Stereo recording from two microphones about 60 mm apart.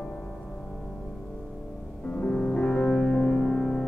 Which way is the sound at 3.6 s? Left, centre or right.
Centre.